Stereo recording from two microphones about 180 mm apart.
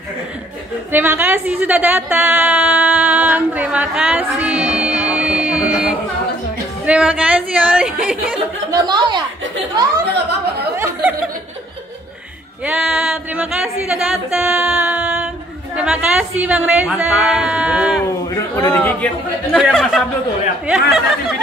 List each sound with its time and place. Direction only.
0.9 s a sound: 10° right (ahead or behind)
6.9 s a woman's voice: 5° right (ahead or behind)
8.7 s speech: 25° right (ahead or behind)
10.8 s a sound: 10° right (ahead or behind)
12.6 s a woman's voice: 5° right (ahead or behind)
14.4 s a sound: 5° right (ahead or behind)
15.7 s a woman's voice: 5° right (ahead or behind)
18.3 s a man's voice: 20° left (ahead or behind)
18.8 s a woman's voice: 10° left (ahead or behind)